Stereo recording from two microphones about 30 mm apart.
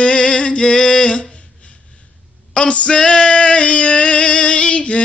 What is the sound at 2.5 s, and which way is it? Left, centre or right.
Male singing, left.